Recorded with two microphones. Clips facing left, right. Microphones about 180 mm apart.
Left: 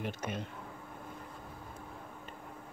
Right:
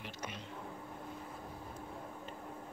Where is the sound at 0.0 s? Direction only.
50° left (ahead or behind).